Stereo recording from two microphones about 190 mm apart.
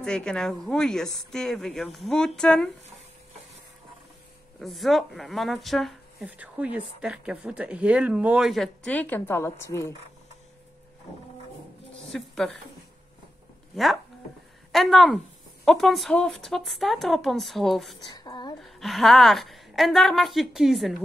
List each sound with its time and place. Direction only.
0.0 s speech: 5° left (ahead or behind)
4.6 s speech: centre (ahead or behind)
12.1 s speech: 5° left (ahead or behind)
14.7 s speech: centre (ahead or behind)
18.1 s a sound: 20° left (ahead or behind)
18.6 s speech: centre (ahead or behind)